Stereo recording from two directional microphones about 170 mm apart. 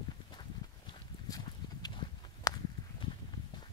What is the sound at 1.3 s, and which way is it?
Walk, 25° left (ahead or behind).